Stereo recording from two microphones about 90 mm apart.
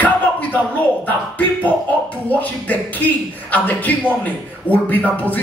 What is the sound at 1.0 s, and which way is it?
Speech, 20° left (ahead or behind).